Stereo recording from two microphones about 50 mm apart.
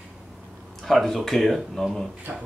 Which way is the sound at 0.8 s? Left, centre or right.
Centre.